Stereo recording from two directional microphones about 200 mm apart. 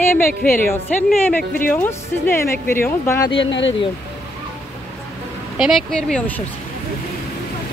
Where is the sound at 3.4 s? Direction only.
65° left (ahead or behind).